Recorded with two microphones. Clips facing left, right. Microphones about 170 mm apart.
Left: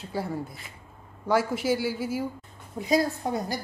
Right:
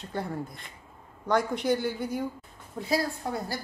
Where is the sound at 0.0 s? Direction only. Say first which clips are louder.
Left 2 dB; 5° left (ahead or behind).